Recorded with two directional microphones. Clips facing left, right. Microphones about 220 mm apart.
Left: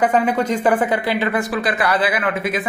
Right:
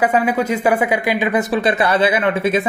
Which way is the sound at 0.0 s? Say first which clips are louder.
Right 1 dB; 10° right (ahead or behind).